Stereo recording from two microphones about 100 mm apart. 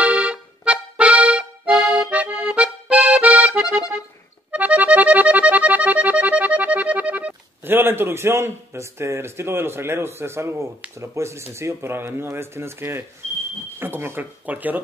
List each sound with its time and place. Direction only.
0.0 s accordion: 15° right (ahead or behind)
4.5 s music: 15° right (ahead or behind)
11.0 s speech: 30° right (ahead or behind)